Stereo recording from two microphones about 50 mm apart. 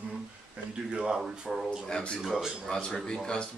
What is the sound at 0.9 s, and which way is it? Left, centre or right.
Speech, centre.